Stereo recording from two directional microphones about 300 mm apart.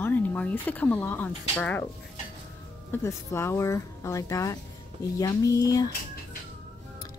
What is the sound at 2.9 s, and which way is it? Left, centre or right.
Speech, centre.